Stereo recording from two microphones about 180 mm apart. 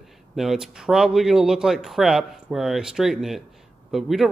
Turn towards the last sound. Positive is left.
turn(degrees=0)  # may be behind; listen again after turning